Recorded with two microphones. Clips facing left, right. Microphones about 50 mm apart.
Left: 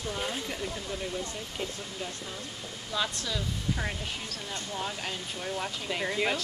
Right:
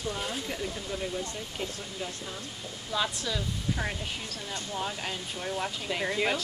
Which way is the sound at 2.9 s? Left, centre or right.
Centre.